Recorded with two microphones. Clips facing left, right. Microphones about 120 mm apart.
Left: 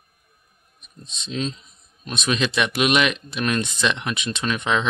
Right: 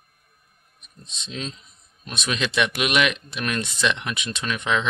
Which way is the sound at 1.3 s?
20° left (ahead or behind).